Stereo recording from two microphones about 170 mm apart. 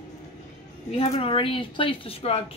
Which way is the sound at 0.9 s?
35° left (ahead or behind).